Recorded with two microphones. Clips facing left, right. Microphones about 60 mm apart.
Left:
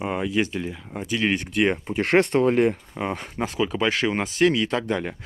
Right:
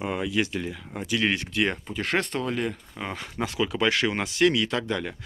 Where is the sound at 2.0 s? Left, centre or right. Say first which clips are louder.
Left 9 dB; left.